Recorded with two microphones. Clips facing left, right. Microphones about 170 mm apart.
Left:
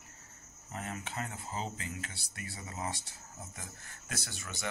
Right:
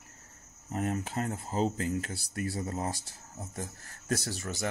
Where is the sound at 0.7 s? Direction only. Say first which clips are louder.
Right 9 dB; 40° right (ahead or behind).